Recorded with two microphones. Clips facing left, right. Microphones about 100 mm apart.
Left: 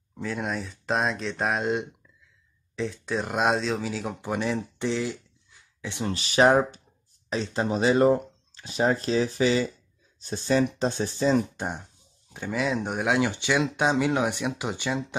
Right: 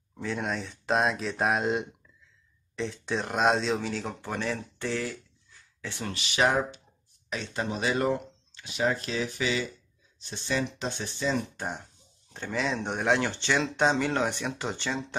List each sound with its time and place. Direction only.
0.1 s speech: centre (ahead or behind)
4.2 s speech: 15° left (ahead or behind)
6.1 s speech: 35° left (ahead or behind)
11.5 s speech: 15° left (ahead or behind)
12.3 s speech: 5° left (ahead or behind)